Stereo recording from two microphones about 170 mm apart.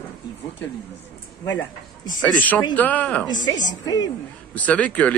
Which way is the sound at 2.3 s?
10° left (ahead or behind).